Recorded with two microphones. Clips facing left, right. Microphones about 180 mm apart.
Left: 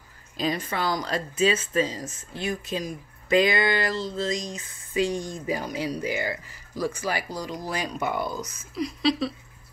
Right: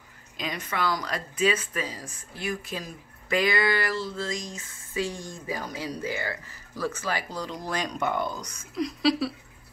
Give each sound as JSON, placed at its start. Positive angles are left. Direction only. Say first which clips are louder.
{"t": 0.4, "sound": "speech", "louder": "left 3 dB", "side_deg": 30}